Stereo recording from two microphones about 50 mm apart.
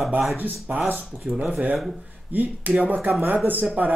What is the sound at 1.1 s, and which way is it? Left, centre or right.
Speech, centre.